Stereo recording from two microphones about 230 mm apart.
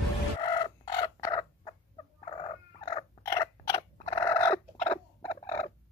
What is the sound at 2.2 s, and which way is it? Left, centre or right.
Purr, left.